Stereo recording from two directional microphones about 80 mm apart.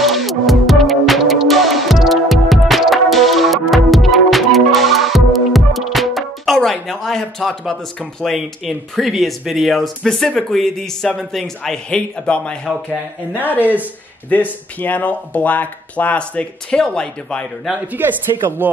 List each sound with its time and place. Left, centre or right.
0.0 s music: centre
8.2 s speech: centre
13.5 s speech: right
14.3 s speech: left
17.9 s speech: right